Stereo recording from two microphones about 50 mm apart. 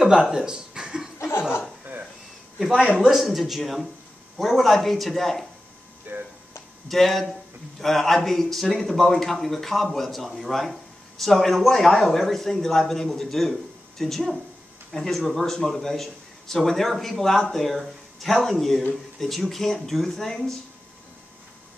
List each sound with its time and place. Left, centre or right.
0.0 s a sound: centre
3.2 s a man's voice: centre
6.1 s speech: right
6.9 s a man's voice: centre